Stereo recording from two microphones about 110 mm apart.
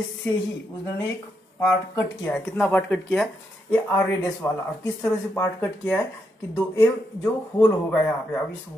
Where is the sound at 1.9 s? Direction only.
25° left (ahead or behind).